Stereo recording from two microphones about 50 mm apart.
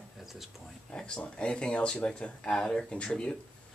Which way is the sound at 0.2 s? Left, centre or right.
Centre.